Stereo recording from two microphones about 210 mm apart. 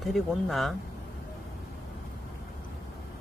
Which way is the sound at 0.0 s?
Centre (ahead or behind).